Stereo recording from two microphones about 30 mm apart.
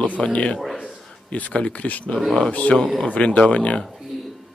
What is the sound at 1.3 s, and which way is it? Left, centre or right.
Speech, left.